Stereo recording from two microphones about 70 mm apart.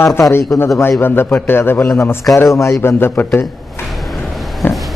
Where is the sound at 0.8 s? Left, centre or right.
Left.